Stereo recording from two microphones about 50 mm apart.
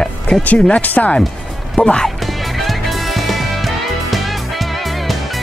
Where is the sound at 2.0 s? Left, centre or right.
Centre.